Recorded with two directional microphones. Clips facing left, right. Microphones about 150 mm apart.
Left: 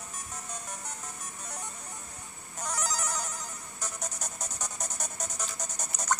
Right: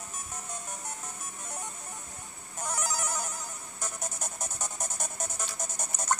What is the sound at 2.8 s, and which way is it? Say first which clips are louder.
Telephone bell ringing: even; 5° right (ahead or behind).